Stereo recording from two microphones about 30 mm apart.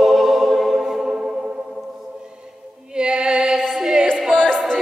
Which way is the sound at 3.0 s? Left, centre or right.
Right.